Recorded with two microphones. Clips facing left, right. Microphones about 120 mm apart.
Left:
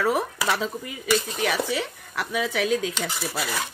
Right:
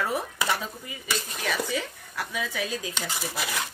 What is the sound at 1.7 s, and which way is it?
Speech, 75° left (ahead or behind).